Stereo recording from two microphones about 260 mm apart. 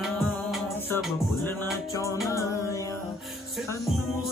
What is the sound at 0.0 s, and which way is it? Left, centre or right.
Music, centre.